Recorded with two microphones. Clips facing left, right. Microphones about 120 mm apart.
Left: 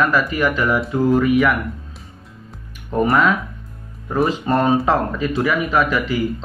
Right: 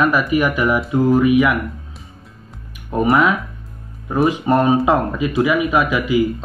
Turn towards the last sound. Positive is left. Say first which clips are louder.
# right 3 dB
turn(degrees=-15)  # may be behind; listen again after turning